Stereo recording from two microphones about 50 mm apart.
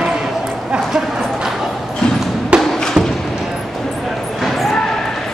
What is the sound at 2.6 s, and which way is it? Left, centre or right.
Thump, centre.